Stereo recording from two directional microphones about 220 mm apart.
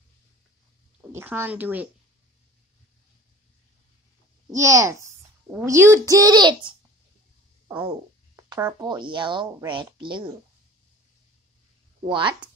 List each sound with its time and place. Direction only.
1.1 s speech: 10° right (ahead or behind)
4.5 s a child's voice: 15° right (ahead or behind)
8.5 s speech: 15° right (ahead or behind)
12.1 s speech: 20° right (ahead or behind)